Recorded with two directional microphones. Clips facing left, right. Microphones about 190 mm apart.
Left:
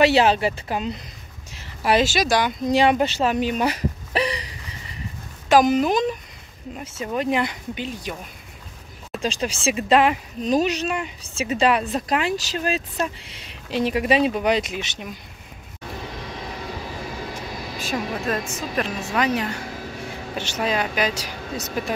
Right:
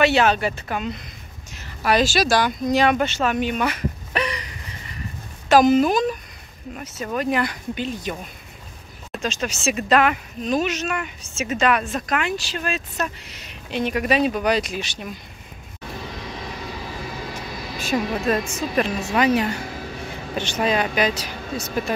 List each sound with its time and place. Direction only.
0.0 s speech: 30° left (ahead or behind)
5.5 s speech: 15° left (ahead or behind)
9.2 s speech: 30° left (ahead or behind)
17.7 s a woman's voice: centre (ahead or behind)
20.6 s speech: centre (ahead or behind)